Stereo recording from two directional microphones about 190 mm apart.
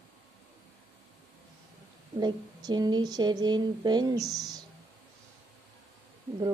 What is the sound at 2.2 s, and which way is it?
A woman's voice, 20° right (ahead or behind).